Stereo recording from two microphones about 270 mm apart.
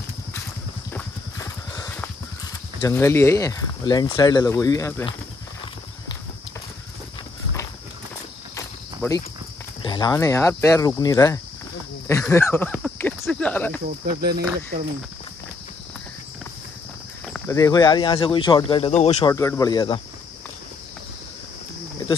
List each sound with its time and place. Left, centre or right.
0.9 s horse: centre
2.8 s speech: centre
8.5 s cricket: centre
9.8 s speech: centre
12.1 s a sound: centre
14.0 s speech: right
17.3 s speech: centre
19.3 s speech: centre